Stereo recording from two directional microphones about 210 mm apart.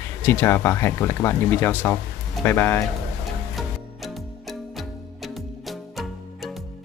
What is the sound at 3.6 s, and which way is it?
Music, centre (ahead or behind).